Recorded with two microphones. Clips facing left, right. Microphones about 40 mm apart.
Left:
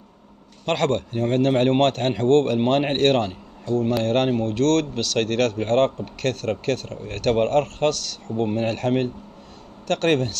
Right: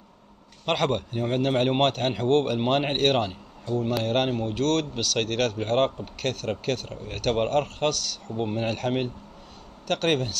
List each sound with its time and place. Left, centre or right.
0.7 s speech: centre